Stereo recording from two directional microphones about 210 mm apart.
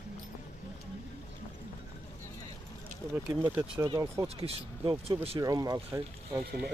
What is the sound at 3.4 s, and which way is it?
Speech, 10° right (ahead or behind).